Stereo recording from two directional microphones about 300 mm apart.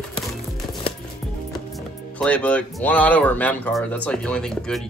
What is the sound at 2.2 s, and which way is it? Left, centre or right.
Speech, centre.